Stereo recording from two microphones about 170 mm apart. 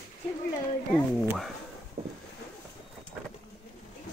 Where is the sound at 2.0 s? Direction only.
35° right (ahead or behind).